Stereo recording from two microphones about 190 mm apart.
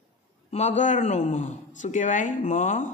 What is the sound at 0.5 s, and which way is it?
A man's voice, 40° left (ahead or behind).